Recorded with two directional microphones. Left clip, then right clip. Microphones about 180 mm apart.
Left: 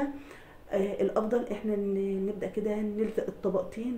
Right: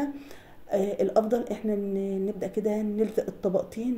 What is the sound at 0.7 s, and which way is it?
A woman's voice, 35° right (ahead or behind).